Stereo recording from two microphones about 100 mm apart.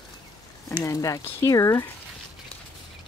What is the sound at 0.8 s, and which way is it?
Speech, 30° left (ahead or behind).